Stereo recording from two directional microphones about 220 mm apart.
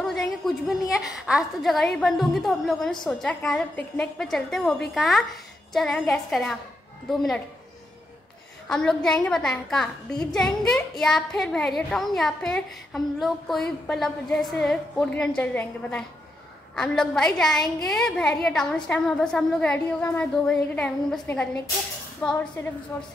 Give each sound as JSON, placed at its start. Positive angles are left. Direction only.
{"t": 0.0, "sound": "a woman's voice", "side_deg": 0}
{"t": 8.6, "sound": "a woman's voice", "side_deg": 5}